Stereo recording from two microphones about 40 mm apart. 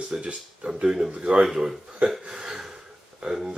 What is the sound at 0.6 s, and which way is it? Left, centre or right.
Speech, centre.